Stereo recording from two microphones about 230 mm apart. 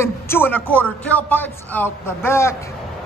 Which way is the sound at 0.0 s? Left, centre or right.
Centre.